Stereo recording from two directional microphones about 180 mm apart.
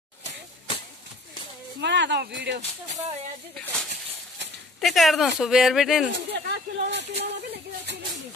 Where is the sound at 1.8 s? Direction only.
75° right (ahead or behind).